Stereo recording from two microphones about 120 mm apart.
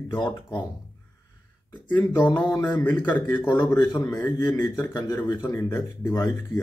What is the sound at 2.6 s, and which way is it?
Mantra, 15° left (ahead or behind).